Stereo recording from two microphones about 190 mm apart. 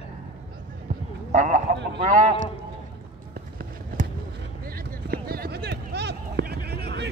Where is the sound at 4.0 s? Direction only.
45° right (ahead or behind).